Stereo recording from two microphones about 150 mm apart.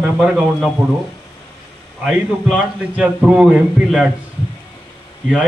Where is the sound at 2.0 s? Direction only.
5° right (ahead or behind).